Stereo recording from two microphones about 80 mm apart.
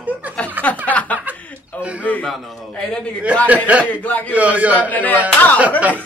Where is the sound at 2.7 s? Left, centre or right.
Centre.